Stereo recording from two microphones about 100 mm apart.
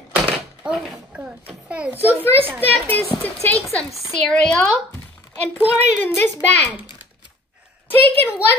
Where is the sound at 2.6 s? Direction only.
20° left (ahead or behind).